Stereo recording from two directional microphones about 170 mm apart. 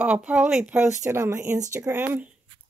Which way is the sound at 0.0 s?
5° right (ahead or behind).